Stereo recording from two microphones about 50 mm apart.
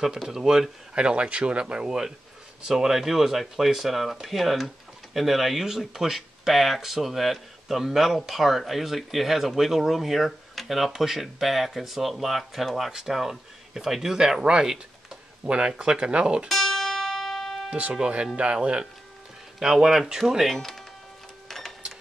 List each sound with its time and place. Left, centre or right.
0.0 s speech: centre
16.4 s music: centre
17.6 s speech: right; by 20.8 s centre
21.5 s printer: centre